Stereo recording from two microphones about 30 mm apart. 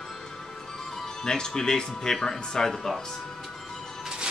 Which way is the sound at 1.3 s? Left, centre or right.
Left.